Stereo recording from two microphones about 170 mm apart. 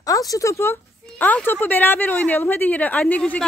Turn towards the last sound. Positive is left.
turn(degrees=10)  # may be behind; listen again after turning